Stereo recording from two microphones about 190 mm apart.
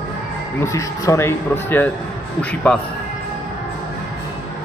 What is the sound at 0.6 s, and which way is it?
A man's voice, 15° left (ahead or behind).